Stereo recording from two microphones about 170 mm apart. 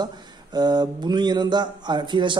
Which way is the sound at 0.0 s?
25° right (ahead or behind).